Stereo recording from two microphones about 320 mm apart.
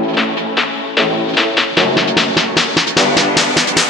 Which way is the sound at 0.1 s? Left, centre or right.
Centre.